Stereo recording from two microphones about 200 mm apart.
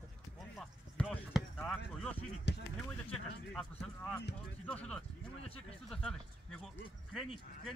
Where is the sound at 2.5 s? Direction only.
60° left (ahead or behind).